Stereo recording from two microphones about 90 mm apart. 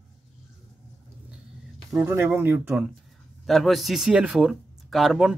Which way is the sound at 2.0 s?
25° right (ahead or behind).